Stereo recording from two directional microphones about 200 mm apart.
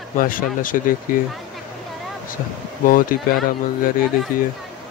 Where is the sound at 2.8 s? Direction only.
45° left (ahead or behind).